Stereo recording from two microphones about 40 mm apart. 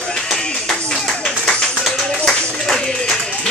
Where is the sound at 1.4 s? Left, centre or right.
Centre.